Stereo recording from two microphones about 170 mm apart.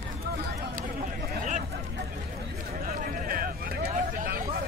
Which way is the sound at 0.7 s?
55° right (ahead or behind).